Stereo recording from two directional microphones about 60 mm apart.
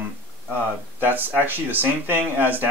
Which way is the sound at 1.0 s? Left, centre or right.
Right.